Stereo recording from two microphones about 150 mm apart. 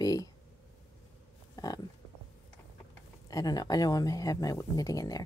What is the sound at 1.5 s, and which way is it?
Pig, 25° left (ahead or behind).